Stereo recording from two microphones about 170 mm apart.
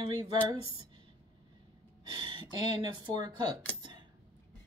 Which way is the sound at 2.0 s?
30° right (ahead or behind).